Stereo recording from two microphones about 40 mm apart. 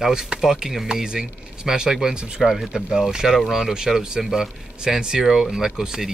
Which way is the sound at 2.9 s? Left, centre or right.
Centre.